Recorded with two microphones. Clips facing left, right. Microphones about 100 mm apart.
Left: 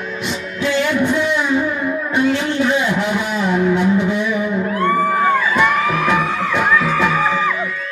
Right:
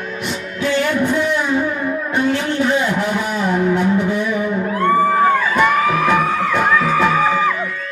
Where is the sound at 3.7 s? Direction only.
45° right (ahead or behind).